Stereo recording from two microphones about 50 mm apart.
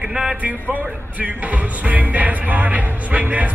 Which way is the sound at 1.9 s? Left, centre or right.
Right.